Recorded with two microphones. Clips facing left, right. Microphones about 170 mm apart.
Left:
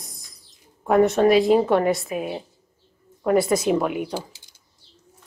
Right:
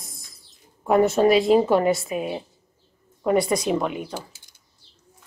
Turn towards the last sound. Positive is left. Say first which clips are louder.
# left 3 dB
turn(degrees=10)  # may be behind; listen again after turning